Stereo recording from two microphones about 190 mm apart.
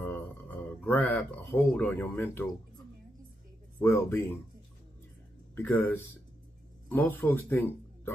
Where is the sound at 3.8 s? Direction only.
15° left (ahead or behind).